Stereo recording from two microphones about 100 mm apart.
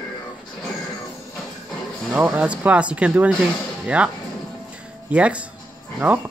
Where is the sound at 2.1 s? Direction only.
15° right (ahead or behind).